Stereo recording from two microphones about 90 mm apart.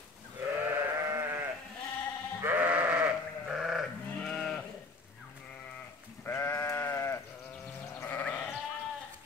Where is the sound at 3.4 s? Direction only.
5° right (ahead or behind).